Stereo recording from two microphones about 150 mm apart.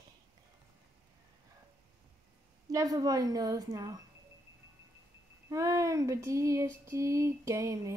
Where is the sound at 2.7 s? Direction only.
25° right (ahead or behind).